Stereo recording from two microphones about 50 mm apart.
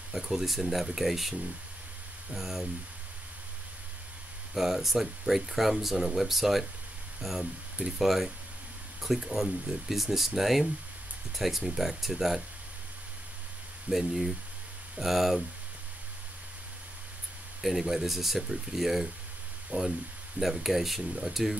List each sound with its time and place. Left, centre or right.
0.1 s speech: centre
2.3 s speech: centre
4.6 s speech: centre
13.8 s speech: centre
17.6 s speech: centre
19.7 s speech: right
20.3 s speech: centre
21.0 s speech: centre